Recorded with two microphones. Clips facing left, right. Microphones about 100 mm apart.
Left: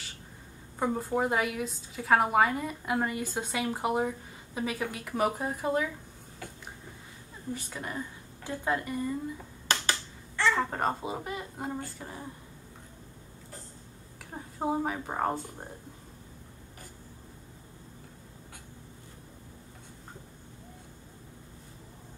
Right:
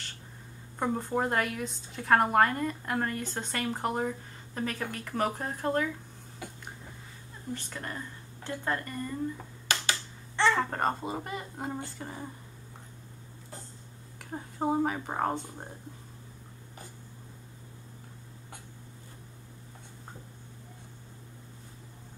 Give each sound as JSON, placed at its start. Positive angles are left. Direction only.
{"t": 0.7, "sound": "speech", "side_deg": 5}
{"t": 6.4, "sound": "a sound", "side_deg": -10}
{"t": 7.5, "sound": "speech", "side_deg": 10}
{"t": 10.5, "sound": "speech", "side_deg": 0}
{"t": 14.3, "sound": "speech", "side_deg": 0}